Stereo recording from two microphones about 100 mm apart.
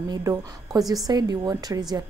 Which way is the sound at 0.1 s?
35° right (ahead or behind).